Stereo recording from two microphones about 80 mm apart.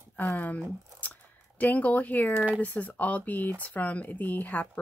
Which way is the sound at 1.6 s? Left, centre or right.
Centre.